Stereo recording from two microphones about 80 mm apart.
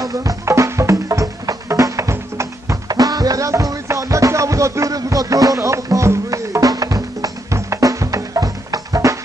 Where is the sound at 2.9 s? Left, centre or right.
Right.